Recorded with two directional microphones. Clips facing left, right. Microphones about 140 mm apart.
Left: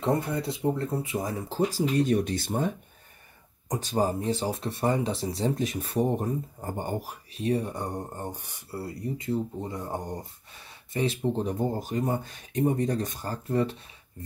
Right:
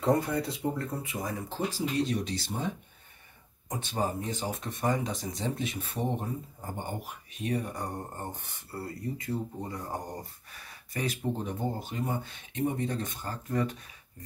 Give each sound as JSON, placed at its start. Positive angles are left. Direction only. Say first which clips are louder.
{"t": 0.0, "sound": "speech", "louder": "even", "side_deg": 25}
{"t": 3.6, "sound": "speech", "louder": "left 5 dB", "side_deg": 40}
{"t": 8.3, "sound": "speech", "louder": "left 3 dB", "side_deg": 10}